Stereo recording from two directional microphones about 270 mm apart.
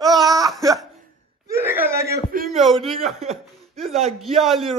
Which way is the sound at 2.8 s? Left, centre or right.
Right.